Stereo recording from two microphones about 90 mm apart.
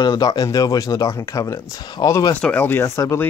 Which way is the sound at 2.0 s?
35° left (ahead or behind).